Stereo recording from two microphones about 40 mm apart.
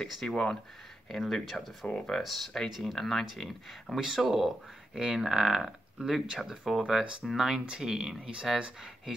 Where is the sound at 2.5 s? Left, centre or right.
Centre.